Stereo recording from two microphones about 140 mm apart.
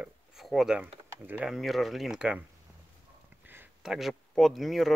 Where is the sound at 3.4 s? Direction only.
15° right (ahead or behind).